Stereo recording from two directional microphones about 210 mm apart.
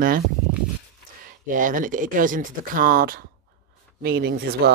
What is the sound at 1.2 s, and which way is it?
Speech, 40° right (ahead or behind).